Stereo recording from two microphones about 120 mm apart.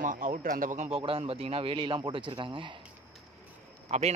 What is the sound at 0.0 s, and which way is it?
Speech, 90° right.